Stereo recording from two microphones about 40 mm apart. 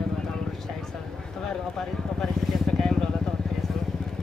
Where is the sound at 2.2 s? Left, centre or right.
Centre.